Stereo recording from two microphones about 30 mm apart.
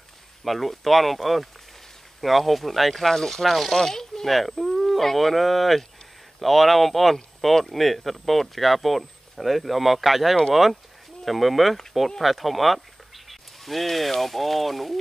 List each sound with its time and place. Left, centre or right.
0.4 s speech: centre
3.4 s speech: centre
3.7 s speech: centre
4.4 s speech: centre
13.3 s a sound: centre
14.2 s speech: centre